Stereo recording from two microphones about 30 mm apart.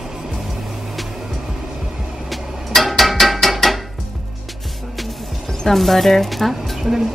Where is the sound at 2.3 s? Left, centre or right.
Centre.